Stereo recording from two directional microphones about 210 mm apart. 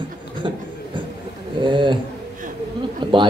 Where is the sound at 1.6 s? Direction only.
20° right (ahead or behind).